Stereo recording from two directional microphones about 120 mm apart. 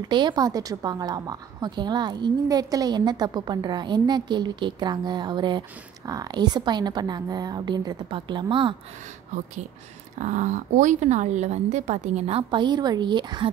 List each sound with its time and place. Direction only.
0.1 s a woman's voice: 40° right (ahead or behind)
10.1 s a woman's voice: 85° right; by 13.5 s 40° right (ahead or behind)